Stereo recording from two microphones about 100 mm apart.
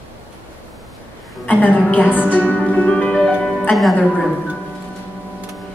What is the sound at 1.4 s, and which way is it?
Music, 15° left (ahead or behind).